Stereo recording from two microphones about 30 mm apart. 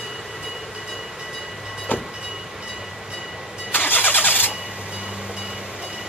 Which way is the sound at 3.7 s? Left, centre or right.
Left.